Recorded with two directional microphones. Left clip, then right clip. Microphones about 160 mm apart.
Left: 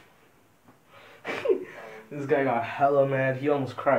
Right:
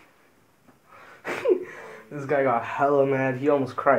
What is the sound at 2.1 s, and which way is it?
Speech, 20° right (ahead or behind).